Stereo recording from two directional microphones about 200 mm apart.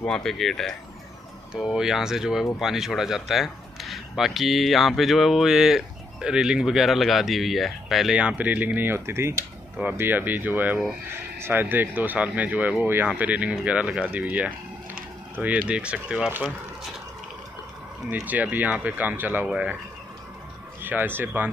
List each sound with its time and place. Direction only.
0.0 s speech: 5° left (ahead or behind)
18.1 s speech: 10° right (ahead or behind)
20.8 s speech: 10° right (ahead or behind)